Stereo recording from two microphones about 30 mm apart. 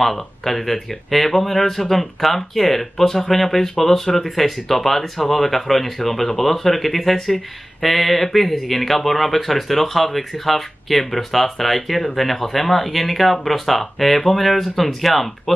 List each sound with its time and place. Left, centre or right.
0.0 s speech: centre